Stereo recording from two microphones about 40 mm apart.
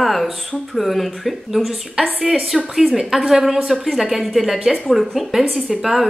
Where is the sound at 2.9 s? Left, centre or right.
Centre.